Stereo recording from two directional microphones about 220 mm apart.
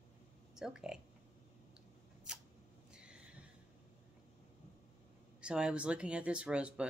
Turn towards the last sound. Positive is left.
turn(degrees=-5)  # may be behind; listen again after turning